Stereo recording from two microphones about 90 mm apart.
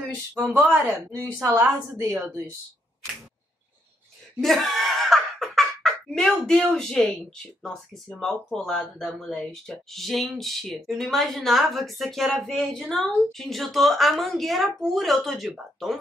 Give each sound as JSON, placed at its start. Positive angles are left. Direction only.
{"t": 0.4, "sound": "speech", "side_deg": -25}
{"t": 4.4, "sound": "laughter", "side_deg": 0}
{"t": 6.7, "sound": "speech", "side_deg": 5}